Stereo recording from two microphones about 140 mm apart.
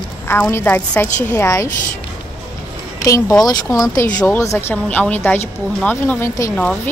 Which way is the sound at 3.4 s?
25° left (ahead or behind).